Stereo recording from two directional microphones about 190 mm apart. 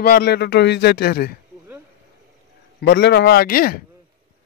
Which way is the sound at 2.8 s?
60° left (ahead or behind).